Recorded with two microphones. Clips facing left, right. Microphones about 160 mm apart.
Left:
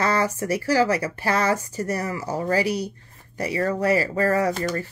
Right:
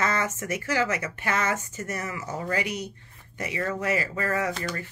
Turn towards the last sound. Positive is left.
turn(degrees=40)  # may be behind; listen again after turning